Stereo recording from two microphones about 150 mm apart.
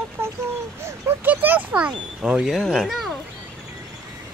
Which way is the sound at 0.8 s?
15° right (ahead or behind).